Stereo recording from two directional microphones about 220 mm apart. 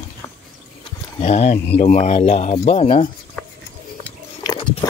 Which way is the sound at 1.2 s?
30° left (ahead or behind).